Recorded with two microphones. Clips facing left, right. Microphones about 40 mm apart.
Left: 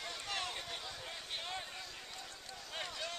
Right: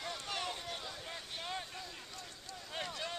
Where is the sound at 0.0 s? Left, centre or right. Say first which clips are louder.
Right 1 dB; centre.